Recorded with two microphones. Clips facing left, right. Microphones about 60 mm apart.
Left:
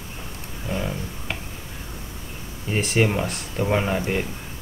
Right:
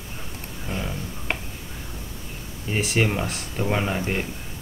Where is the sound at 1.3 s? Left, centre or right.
Right.